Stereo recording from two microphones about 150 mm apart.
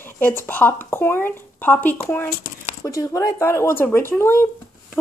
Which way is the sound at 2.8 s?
20° left (ahead or behind).